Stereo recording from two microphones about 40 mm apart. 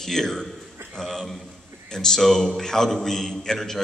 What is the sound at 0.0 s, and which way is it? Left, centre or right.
A man's voice, centre.